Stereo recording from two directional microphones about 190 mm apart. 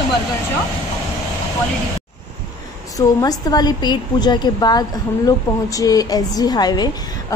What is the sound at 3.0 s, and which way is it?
A woman's voice, 20° left (ahead or behind).